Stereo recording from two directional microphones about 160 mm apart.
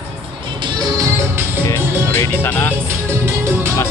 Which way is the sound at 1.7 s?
15° left (ahead or behind).